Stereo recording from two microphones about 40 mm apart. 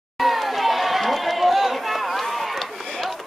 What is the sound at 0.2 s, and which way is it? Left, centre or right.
Run, centre.